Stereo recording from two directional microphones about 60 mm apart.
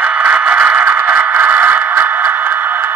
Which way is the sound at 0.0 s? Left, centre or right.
Right.